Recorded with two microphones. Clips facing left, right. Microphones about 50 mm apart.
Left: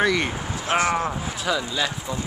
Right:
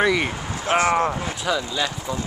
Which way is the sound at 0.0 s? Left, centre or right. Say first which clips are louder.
Right 1 dB; centre.